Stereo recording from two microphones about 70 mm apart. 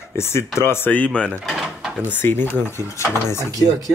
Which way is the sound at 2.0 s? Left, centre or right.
Left.